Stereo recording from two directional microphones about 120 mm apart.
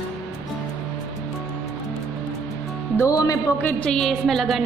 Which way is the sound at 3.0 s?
25° left (ahead or behind).